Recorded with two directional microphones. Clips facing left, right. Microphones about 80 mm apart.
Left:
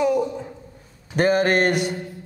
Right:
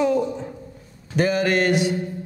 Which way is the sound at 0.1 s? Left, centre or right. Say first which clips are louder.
Even; centre.